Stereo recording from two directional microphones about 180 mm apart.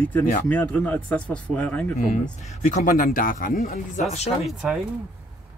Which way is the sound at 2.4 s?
40° left (ahead or behind).